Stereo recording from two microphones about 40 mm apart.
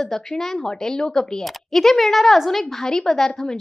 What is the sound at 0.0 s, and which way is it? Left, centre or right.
A woman's voice, centre.